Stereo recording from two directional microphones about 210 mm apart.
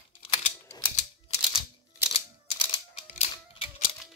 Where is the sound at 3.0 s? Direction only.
30° left (ahead or behind).